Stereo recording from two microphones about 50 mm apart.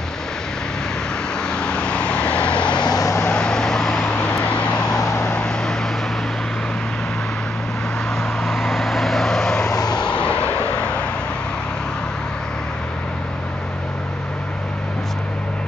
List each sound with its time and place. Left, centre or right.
1.5 s vehicle: centre
4.2 s vehicle: left
8.5 s vehicle: centre